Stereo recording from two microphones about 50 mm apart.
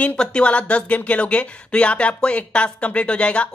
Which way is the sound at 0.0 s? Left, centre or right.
Left.